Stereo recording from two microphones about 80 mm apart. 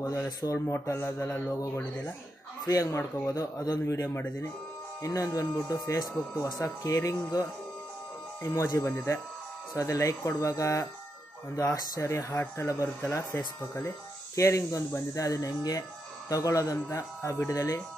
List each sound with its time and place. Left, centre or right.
0.4 s speech: left
2.6 s speech: left
8.4 s speech: left